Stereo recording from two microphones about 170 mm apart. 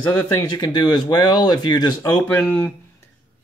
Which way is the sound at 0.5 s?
25° left (ahead or behind).